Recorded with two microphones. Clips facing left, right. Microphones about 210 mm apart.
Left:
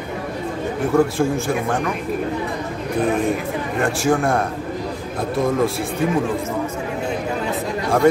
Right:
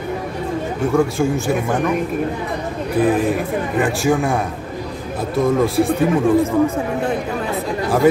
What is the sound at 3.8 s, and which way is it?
Speech, centre (ahead or behind).